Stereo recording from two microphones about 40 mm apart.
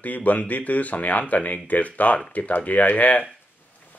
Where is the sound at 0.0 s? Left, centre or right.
Left.